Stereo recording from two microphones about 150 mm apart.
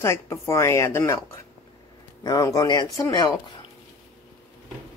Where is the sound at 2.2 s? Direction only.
25° left (ahead or behind).